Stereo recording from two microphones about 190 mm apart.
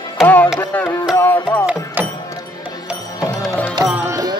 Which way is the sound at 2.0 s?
10° right (ahead or behind).